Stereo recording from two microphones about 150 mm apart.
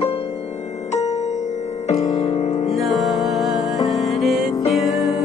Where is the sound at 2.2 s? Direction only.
45° left (ahead or behind).